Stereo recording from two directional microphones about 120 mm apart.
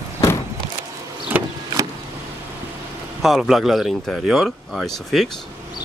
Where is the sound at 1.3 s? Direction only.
15° right (ahead or behind).